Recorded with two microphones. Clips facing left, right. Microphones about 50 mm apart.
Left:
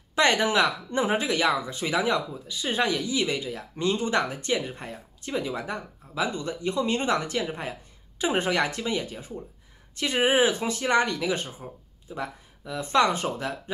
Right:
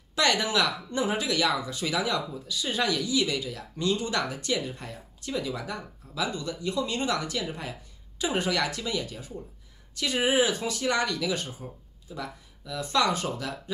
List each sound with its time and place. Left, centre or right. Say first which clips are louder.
0.1 s speech: left 3 dB; left